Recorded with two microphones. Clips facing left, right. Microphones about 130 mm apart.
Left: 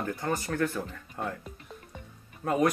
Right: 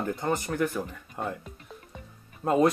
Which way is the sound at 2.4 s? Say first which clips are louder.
Right 3 dB; 25° right (ahead or behind).